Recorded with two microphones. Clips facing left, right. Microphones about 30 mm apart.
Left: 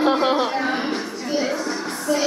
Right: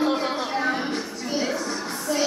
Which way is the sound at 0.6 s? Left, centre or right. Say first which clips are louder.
Left 2 dB; left.